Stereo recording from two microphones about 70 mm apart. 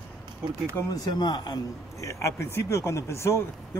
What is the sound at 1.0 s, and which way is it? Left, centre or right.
Speech, left.